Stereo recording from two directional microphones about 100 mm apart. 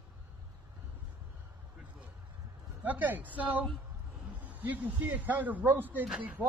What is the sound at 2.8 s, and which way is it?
Speech, 15° right (ahead or behind).